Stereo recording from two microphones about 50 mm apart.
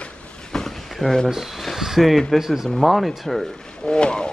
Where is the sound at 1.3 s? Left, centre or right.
Centre.